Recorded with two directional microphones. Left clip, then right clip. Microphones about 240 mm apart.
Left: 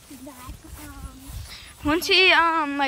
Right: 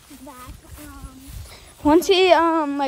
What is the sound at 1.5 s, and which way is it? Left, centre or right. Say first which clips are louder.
Speech: right 7 dB; right.